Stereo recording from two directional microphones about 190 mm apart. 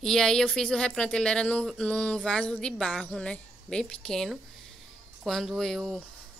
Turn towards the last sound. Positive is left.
turn(degrees=0)  # may be behind; listen again after turning